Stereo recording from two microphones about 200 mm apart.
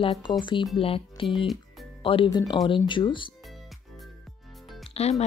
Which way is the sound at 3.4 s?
Centre (ahead or behind).